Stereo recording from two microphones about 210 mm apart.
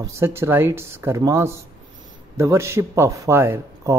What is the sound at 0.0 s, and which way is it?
Speech, 10° right (ahead or behind).